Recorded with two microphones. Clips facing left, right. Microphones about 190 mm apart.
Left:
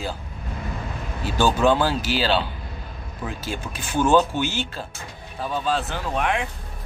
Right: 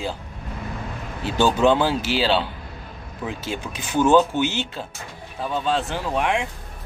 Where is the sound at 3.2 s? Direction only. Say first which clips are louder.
Right 2 dB; 20° right (ahead or behind).